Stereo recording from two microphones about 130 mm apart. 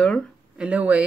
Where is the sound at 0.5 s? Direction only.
10° right (ahead or behind).